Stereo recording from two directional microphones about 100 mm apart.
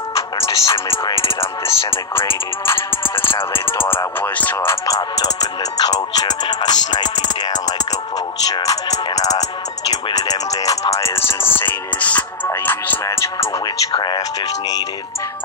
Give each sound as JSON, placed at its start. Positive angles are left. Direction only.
{"t": 0.4, "sound": "music", "side_deg": 30}
{"t": 1.4, "sound": "speech", "side_deg": 25}
{"t": 2.6, "sound": "music", "side_deg": 25}
{"t": 5.2, "sound": "music", "side_deg": 40}
{"t": 13.0, "sound": "music", "side_deg": 30}
{"t": 13.9, "sound": "music", "side_deg": 50}